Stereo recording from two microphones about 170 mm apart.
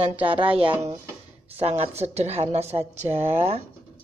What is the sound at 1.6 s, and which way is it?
A woman's voice, 35° right (ahead or behind).